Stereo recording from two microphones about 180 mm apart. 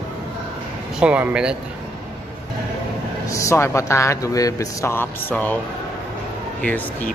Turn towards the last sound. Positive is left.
turn(degrees=10)  # may be behind; listen again after turning